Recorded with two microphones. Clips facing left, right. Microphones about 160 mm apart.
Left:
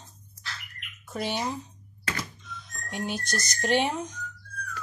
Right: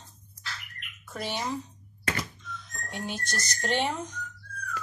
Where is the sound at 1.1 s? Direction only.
20° left (ahead or behind).